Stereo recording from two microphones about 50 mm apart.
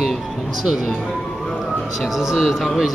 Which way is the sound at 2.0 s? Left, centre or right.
Centre.